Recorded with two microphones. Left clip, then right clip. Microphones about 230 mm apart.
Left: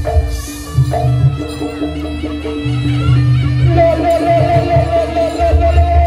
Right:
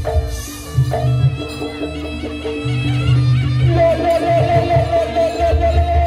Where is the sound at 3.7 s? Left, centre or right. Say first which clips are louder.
Left 3 dB; right.